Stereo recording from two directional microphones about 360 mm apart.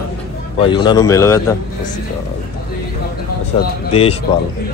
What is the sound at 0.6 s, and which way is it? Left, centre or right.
Speech, centre.